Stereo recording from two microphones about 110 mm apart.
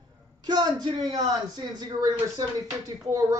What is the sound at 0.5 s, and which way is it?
Speech, 40° right (ahead or behind).